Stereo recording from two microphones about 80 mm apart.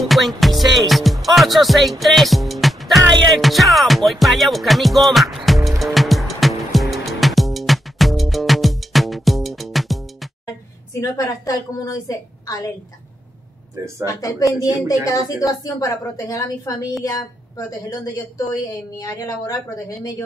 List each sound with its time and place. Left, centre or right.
0.1 s music: centre
11.0 s a woman's voice: left
14.0 s a woman's voice: left